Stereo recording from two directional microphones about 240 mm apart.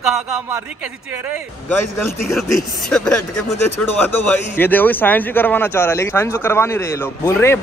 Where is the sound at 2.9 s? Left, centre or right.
Centre.